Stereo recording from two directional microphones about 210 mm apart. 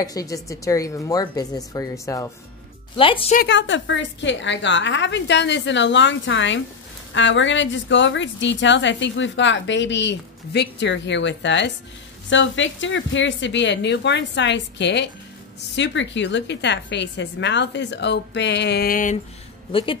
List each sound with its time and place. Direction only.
0.0 s speech: 15° left (ahead or behind)
3.3 s a woman's voice: 60° left (ahead or behind); by 19.1 s 40° left (ahead or behind)
19.7 s speech: 25° left (ahead or behind)